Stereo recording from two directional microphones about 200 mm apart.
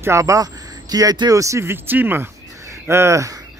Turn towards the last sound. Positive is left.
turn(degrees=-15)  # may be behind; listen again after turning